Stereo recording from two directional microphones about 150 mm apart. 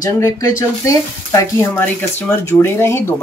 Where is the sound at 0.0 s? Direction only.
20° left (ahead or behind).